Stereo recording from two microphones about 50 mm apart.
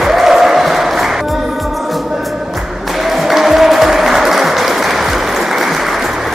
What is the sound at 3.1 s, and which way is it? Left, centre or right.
Music, centre.